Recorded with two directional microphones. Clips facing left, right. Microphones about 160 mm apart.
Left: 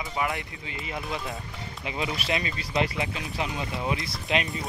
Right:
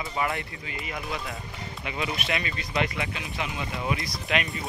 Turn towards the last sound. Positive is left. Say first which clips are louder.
# left 1 dB
turn(degrees=25)  # may be behind; listen again after turning